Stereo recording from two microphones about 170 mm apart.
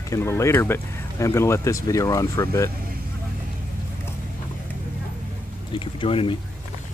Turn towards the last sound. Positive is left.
turn(degrees=30)  # may be behind; listen again after turning